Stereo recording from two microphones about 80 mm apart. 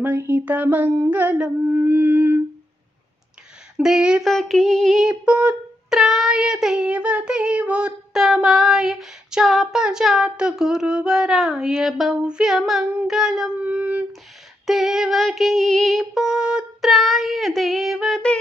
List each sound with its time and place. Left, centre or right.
0.5 s a sound: right
1.9 s wind instrument: right
3.8 s child singing: centre
4.2 s female singing: centre
5.2 s child singing: centre
5.9 s child singing: centre
8.1 s female singing: centre
13.7 s a sound: right
14.7 s female singing: centre